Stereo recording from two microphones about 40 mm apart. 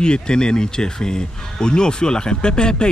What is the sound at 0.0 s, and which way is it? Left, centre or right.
Speech, left.